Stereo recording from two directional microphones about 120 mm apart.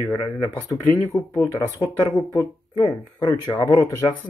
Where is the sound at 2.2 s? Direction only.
35° left (ahead or behind).